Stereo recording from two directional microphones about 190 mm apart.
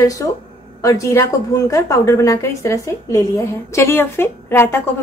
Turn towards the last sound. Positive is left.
turn(degrees=10)  # may be behind; listen again after turning